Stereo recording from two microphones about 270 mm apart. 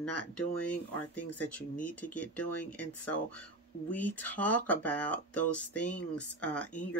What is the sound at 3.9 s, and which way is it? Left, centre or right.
Speech, centre.